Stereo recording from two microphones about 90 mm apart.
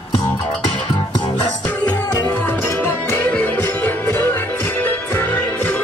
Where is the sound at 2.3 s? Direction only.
25° left (ahead or behind).